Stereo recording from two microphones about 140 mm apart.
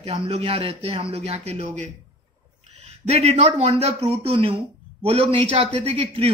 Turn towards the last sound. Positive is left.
turn(degrees=-40)  # may be behind; listen again after turning